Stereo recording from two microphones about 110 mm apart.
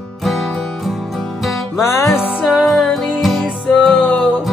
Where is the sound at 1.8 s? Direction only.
25° left (ahead or behind).